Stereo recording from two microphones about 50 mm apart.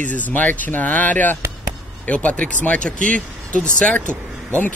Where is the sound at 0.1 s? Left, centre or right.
Left.